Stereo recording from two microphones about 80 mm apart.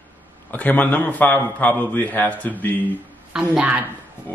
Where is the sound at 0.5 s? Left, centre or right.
Centre.